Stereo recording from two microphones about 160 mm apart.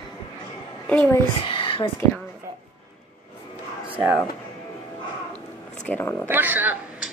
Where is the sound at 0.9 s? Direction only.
10° left (ahead or behind).